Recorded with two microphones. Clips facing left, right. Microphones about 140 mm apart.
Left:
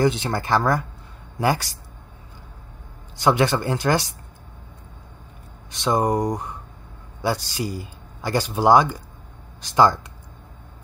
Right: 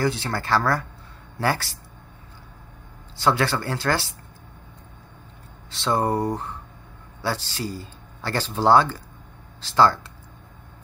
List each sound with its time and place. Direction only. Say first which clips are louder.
0.0 s speech: left 4 dB; 20° left (ahead or behind)
3.2 s speech: left 3 dB; 15° left (ahead or behind)
5.7 s speech: left 2 dB; 15° left (ahead or behind)